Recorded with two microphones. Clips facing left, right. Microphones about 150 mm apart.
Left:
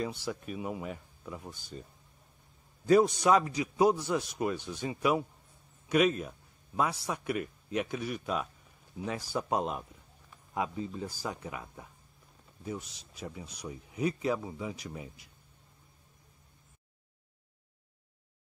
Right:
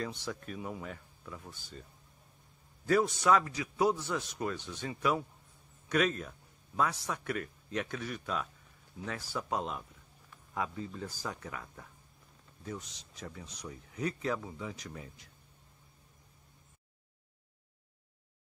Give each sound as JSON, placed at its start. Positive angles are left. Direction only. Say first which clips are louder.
{"t": 0.0, "sound": "speech", "louder": "left 3 dB", "side_deg": 10}
{"t": 2.9, "sound": "speech", "louder": "left 4 dB", "side_deg": 20}